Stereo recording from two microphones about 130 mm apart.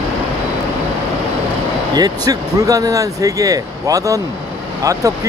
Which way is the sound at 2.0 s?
30° right (ahead or behind).